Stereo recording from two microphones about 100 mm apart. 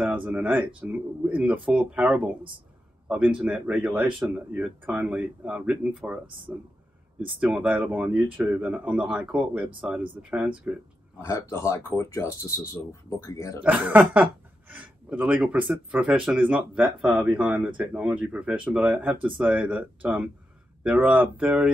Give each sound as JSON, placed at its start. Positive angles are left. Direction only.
{"t": 0.0, "sound": "speech", "side_deg": -15}
{"t": 3.3, "sound": "speech", "side_deg": -10}
{"t": 11.2, "sound": "speech", "side_deg": 30}
{"t": 13.6, "sound": "speech", "side_deg": -15}